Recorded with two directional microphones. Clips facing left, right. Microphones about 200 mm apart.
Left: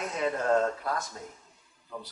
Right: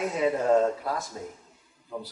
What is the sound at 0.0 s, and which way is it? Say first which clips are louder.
A man's voice: right 4 dB; 5° right (ahead or behind).